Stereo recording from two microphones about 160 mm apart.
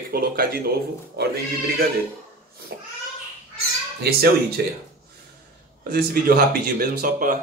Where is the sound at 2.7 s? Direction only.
85° right.